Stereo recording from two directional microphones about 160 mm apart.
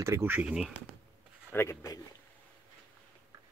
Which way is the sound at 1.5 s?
20° left (ahead or behind).